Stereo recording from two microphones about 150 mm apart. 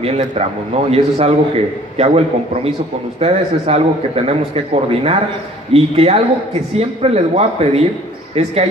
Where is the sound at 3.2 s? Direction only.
40° right (ahead or behind).